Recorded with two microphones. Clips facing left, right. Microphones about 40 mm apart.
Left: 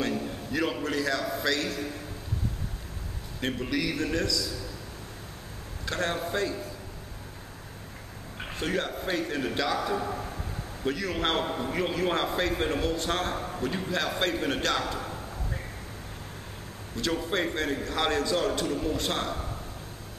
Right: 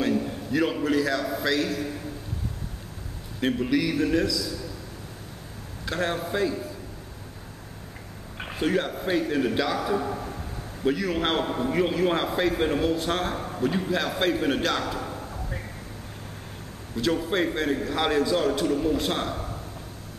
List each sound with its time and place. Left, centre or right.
0.0 s a man's voice: centre
3.3 s a man's voice: centre
5.9 s a man's voice: centre
8.4 s a man's voice: centre
16.9 s a man's voice: centre